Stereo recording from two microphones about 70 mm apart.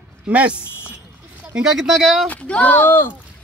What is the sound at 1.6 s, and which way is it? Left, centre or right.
Speech, centre.